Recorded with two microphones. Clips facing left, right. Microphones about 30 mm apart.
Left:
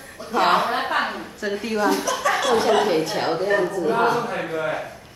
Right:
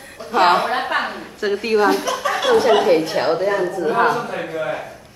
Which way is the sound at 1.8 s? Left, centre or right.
Right.